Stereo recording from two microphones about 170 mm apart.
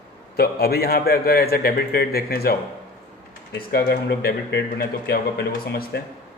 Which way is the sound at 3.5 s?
65° left (ahead or behind).